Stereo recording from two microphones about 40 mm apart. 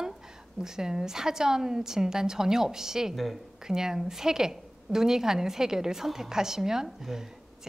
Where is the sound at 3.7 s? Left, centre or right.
Centre.